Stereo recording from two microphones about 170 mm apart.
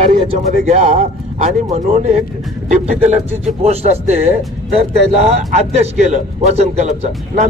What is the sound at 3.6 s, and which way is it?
Speech, 40° right (ahead or behind).